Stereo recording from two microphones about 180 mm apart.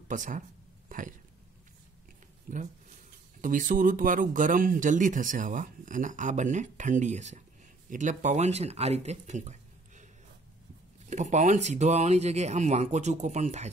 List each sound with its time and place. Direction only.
0.1 s speech: 45° right (ahead or behind)
2.5 s speech: 50° right (ahead or behind)
11.1 s speech: 40° right (ahead or behind)